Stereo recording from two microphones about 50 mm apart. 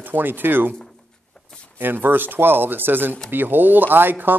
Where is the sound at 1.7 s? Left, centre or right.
Right.